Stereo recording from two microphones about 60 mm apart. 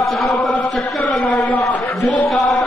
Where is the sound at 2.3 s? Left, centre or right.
Centre.